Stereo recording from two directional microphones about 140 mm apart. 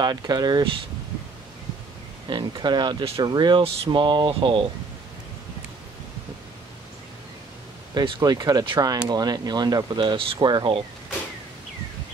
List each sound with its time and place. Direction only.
0.0 s speech: 30° right (ahead or behind)
2.2 s speech: 35° right (ahead or behind)
7.9 s speech: 30° right (ahead or behind)